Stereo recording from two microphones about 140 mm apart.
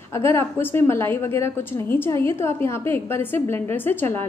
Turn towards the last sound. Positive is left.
turn(degrees=15)  # may be behind; listen again after turning